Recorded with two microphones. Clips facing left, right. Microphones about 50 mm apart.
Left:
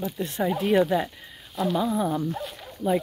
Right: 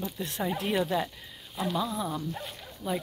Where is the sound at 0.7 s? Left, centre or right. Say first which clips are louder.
Left 8 dB; centre.